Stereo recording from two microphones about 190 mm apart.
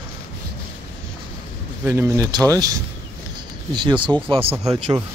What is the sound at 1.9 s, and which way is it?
Speech, 15° right (ahead or behind).